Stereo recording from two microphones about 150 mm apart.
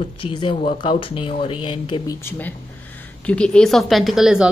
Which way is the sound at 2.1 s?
15° left (ahead or behind).